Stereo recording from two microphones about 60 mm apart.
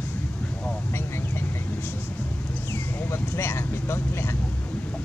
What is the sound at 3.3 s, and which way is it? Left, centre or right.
Speech, left.